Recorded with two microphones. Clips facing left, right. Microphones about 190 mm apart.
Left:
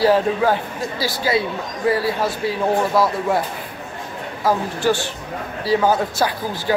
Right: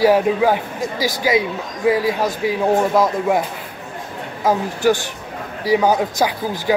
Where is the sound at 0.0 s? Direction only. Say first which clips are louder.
Right 2 dB; 15° right (ahead or behind).